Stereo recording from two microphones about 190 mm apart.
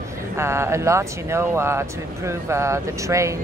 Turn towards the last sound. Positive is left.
turn(degrees=-15)  # may be behind; listen again after turning